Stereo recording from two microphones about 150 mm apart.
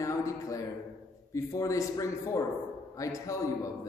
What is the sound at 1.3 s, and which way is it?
A man's voice, 20° left (ahead or behind).